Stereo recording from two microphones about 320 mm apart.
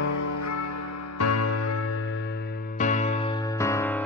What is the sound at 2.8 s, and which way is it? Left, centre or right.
Music, left.